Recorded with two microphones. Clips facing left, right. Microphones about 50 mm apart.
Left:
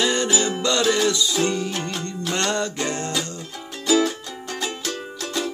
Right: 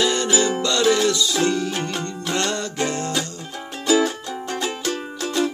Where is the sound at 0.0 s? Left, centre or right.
Left.